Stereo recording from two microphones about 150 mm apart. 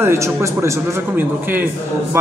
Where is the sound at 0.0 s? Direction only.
20° right (ahead or behind).